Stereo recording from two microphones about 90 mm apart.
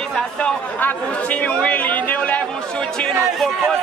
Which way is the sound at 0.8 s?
15° left (ahead or behind).